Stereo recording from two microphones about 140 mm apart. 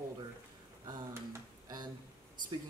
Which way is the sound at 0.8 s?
30° right (ahead or behind).